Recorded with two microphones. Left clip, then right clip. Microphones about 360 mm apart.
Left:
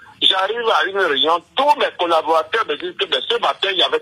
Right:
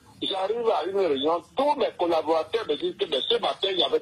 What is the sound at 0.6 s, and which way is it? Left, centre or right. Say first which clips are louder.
A man's voice: left 5 dB; left.